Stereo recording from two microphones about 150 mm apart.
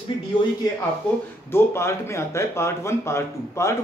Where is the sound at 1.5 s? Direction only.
15° left (ahead or behind).